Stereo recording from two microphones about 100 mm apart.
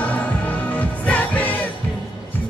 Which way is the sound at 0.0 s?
15° left (ahead or behind).